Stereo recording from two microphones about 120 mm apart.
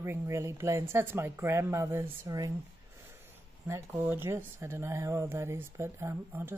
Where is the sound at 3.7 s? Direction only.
15° right (ahead or behind).